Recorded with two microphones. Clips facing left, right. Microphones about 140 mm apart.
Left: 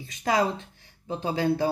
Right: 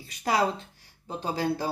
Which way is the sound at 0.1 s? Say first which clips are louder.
Left 1 dB; 35° right (ahead or behind).